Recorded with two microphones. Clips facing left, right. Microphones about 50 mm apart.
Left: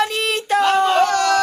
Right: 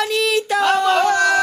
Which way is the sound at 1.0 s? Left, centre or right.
Right.